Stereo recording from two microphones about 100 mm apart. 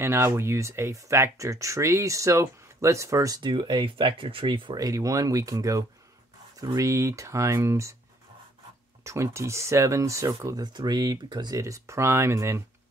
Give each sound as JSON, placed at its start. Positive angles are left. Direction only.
{"t": 0.0, "sound": "speech", "side_deg": -25}
{"t": 3.4, "sound": "speech", "side_deg": -55}
{"t": 4.7, "sound": "speech", "side_deg": -35}
{"t": 9.0, "sound": "speech", "side_deg": -30}
{"t": 10.6, "sound": "speech", "side_deg": -45}
{"t": 11.5, "sound": "speech", "side_deg": -30}